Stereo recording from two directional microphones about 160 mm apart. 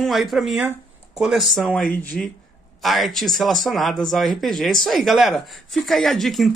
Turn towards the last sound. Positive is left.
turn(degrees=0)  # may be behind; listen again after turning